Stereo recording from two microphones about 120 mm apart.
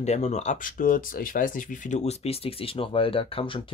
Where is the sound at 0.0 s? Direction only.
70° left (ahead or behind).